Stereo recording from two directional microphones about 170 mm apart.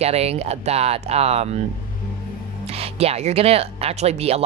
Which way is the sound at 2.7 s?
35° right (ahead or behind).